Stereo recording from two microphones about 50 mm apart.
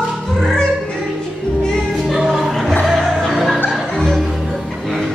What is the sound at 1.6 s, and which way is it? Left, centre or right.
Music, centre.